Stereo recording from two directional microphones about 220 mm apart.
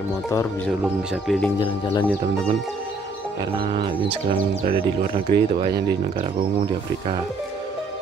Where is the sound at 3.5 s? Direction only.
25° right (ahead or behind).